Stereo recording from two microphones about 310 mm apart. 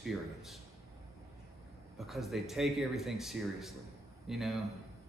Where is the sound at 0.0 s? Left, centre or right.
Centre.